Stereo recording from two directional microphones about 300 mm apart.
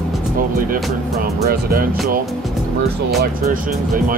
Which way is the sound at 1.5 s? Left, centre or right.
Right.